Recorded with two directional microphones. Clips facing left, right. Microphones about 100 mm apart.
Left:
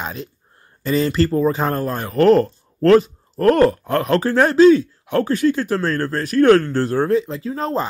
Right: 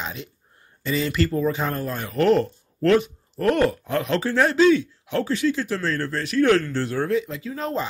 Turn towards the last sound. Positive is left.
turn(degrees=35)  # may be behind; listen again after turning